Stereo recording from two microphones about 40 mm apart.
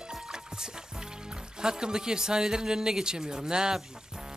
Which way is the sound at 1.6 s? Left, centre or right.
Centre.